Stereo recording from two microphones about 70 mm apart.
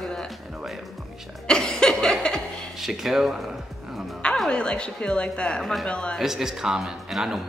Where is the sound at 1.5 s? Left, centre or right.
Centre.